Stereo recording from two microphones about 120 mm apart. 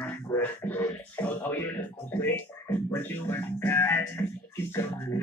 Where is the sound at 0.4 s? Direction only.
15° left (ahead or behind).